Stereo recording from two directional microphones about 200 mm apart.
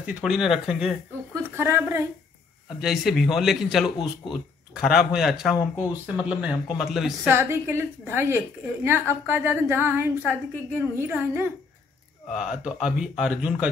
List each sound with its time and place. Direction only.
0.0 s a woman's voice: 5° right (ahead or behind)
2.8 s speech: centre (ahead or behind)
7.3 s a woman's voice: 10° right (ahead or behind)